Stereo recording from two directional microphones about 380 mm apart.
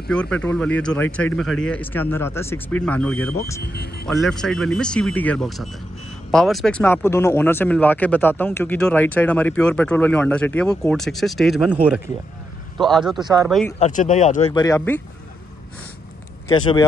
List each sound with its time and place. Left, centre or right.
0.1 s speech: centre
3.6 s speech: left
4.0 s speech: centre
13.7 s speech: centre
16.4 s speech: centre